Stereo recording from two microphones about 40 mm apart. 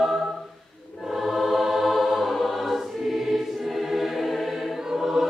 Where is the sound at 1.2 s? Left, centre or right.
Centre.